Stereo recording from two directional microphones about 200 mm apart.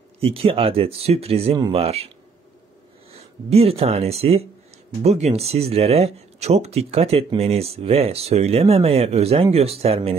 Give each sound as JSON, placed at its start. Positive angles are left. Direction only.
{"t": 0.2, "sound": "speech", "side_deg": -30}
{"t": 3.2, "sound": "speech", "side_deg": -30}